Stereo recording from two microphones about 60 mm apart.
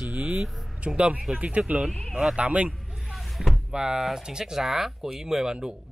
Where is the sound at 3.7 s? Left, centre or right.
Centre.